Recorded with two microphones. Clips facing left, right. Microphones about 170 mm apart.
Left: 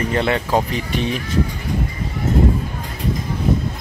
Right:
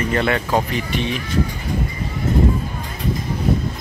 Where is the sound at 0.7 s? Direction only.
40° left (ahead or behind).